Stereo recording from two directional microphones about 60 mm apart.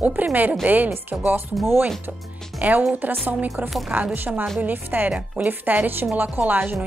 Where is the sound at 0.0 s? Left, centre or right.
Right.